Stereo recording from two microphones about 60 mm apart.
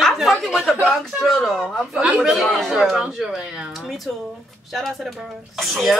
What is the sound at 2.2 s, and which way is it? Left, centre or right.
Speech, centre.